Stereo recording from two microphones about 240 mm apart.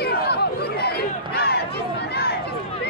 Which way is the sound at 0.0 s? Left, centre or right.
Left.